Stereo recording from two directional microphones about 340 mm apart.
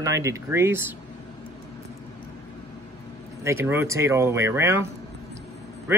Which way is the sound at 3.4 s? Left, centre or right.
Centre.